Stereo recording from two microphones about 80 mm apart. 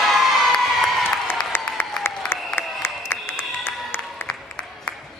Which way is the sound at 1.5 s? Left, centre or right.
Left.